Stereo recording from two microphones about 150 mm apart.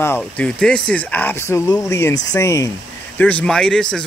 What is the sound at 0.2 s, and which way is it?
A man's voice, 5° left (ahead or behind).